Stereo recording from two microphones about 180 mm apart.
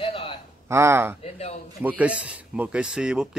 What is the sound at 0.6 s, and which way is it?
Speech, 15° right (ahead or behind).